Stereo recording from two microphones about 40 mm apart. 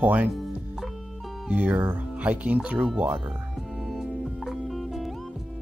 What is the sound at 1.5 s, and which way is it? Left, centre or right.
Speech, right.